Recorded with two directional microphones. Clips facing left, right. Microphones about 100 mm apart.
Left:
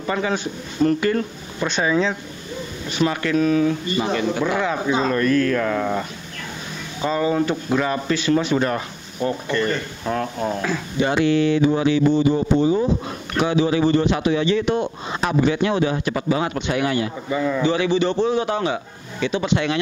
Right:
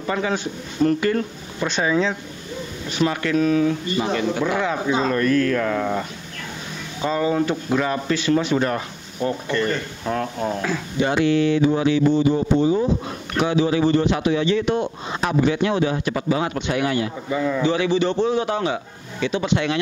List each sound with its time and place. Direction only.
0.0 s speech: 20° left (ahead or behind)
12.4 s speech: 30° left (ahead or behind); by 19.8 s 15° left (ahead or behind)